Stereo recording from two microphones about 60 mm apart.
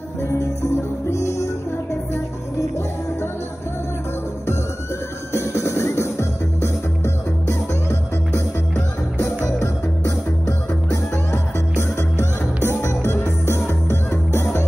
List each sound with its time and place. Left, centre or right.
1.1 s music: left
5.3 s music: left
9.2 s music: left
12.8 s music: left